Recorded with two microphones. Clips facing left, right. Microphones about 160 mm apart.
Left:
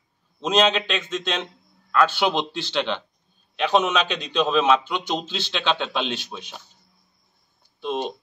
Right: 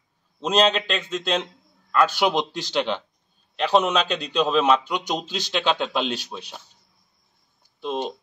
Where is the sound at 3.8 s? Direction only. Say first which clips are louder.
Right 1 dB; 35° right (ahead or behind).